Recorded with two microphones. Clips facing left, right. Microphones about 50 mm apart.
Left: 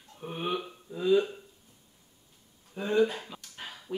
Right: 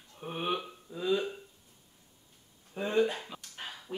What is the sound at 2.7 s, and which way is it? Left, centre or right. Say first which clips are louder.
Speech: left 2 dB; centre.